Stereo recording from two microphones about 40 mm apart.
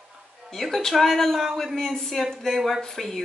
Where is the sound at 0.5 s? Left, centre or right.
Centre.